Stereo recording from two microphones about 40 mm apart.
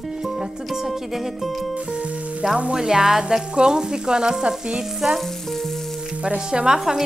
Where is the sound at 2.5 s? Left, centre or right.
Centre.